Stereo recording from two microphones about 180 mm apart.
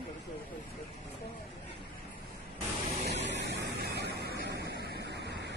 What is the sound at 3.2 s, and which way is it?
Vehicle, 75° right (ahead or behind).